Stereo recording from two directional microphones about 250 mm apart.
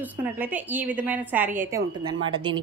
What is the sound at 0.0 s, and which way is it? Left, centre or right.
A woman's voice, centre.